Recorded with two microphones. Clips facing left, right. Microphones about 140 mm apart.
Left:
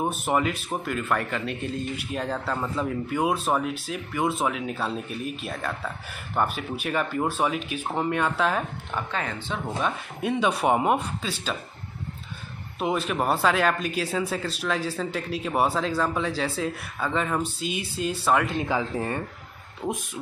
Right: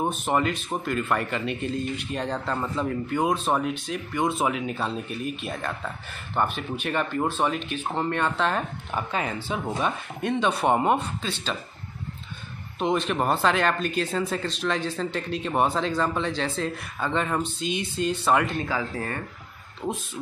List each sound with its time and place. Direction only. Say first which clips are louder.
0.0 s a man's voice: even; 5° left (ahead or behind)
8.9 s speech: right 2 dB; 10° right (ahead or behind)
10.3 s speech: even; 10° left (ahead or behind)
12.7 s speech: right 1 dB; 5° left (ahead or behind)
18.6 s speech: left 2 dB; 20° left (ahead or behind)